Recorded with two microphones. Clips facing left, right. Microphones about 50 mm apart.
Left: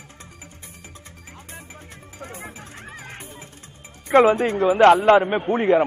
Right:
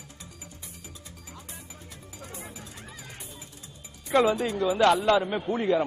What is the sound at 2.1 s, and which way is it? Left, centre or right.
Music, left.